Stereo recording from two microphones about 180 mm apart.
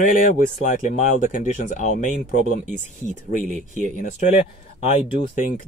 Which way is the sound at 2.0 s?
45° right (ahead or behind).